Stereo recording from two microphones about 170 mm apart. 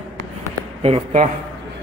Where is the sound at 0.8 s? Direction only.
40° right (ahead or behind).